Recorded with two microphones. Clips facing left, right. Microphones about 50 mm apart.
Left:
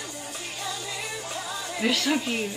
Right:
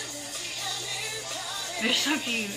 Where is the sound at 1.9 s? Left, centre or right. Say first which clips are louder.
Left 2 dB; centre.